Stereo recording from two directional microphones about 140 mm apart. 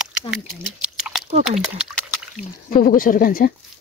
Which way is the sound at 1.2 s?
45° right (ahead or behind).